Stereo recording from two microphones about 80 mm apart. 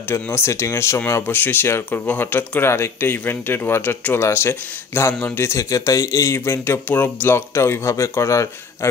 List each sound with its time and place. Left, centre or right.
0.1 s speech: left
6.3 s speech: left